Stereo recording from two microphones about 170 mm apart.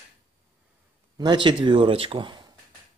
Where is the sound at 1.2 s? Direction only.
30° right (ahead or behind).